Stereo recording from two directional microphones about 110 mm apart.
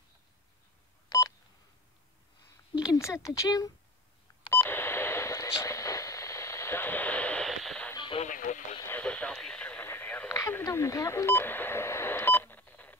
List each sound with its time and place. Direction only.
1.0 s telephone dialing: 35° left (ahead or behind)
2.8 s a sound: 30° left (ahead or behind)
3.3 s speech: 35° left (ahead or behind)
4.5 s telephone dialing: 20° left (ahead or behind)
5.6 s radio: 30° left (ahead or behind); by 7.4 s 10° left (ahead or behind)
7.4 s radio: centre (ahead or behind)
7.9 s radio: 45° left (ahead or behind)
8.8 s radio: 15° left (ahead or behind)
10.3 s telephone dialing: 30° left (ahead or behind)